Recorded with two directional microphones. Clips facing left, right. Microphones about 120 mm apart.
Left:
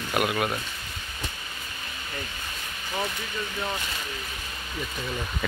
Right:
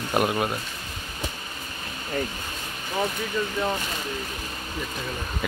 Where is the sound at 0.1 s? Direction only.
30° right (ahead or behind).